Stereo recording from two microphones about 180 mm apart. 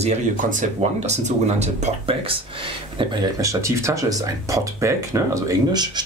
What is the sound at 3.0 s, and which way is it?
Speech, 20° right (ahead or behind).